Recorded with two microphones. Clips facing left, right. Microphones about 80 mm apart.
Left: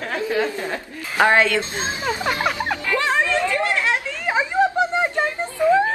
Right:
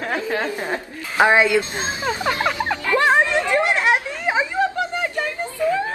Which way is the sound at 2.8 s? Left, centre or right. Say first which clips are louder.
Right 5 dB; right.